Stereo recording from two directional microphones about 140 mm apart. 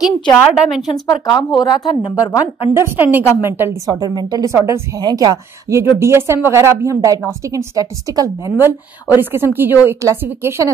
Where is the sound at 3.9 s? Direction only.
30° right (ahead or behind).